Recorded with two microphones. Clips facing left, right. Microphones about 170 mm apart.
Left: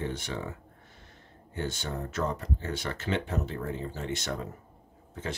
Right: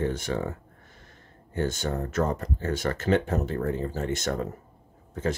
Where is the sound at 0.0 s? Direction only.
45° right (ahead or behind).